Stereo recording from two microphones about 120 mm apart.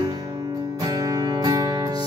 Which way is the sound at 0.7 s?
30° right (ahead or behind).